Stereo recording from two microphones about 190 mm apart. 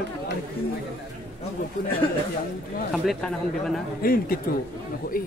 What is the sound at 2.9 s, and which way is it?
Speech, centre (ahead or behind).